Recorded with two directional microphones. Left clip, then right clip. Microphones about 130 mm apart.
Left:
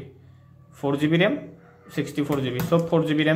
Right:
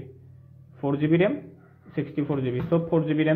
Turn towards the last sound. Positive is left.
turn(degrees=-15)  # may be behind; listen again after turning